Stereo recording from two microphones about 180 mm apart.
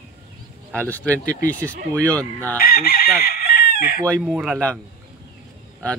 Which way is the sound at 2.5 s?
55° left (ahead or behind).